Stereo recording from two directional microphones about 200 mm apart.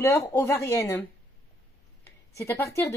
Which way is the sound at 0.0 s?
10° left (ahead or behind).